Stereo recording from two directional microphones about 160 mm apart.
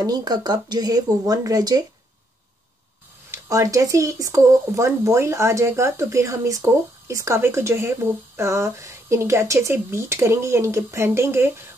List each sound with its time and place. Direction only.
0.0 s speech: 25° right (ahead or behind)
3.3 s speech: 20° right (ahead or behind)